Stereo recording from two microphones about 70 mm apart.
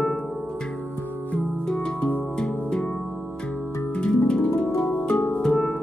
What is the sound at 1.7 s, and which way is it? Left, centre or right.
Music, centre.